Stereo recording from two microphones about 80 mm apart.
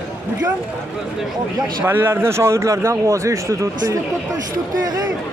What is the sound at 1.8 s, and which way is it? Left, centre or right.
A man's voice, right.